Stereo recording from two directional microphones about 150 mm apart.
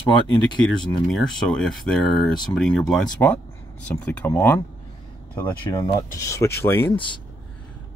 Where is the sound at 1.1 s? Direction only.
5° left (ahead or behind).